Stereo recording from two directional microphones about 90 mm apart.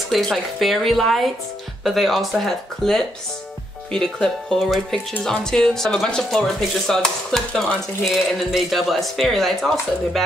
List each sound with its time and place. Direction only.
0.1 s speech: 5° left (ahead or behind)